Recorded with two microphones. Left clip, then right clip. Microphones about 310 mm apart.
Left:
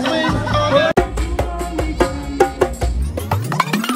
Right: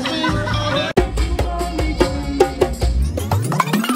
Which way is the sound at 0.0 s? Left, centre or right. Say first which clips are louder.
Left 2 dB; centre.